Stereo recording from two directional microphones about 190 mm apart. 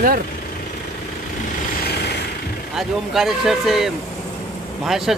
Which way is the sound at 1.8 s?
55° left (ahead or behind).